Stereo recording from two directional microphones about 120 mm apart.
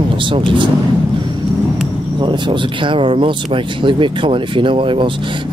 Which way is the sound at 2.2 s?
40° right (ahead or behind).